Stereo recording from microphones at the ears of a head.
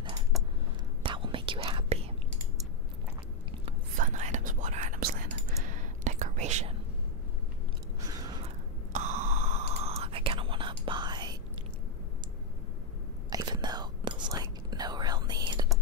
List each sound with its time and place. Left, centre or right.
1.0 s whispering: right
3.9 s whispering: right
8.0 s a sound: right
8.9 s whispering: right
13.4 s whispering: right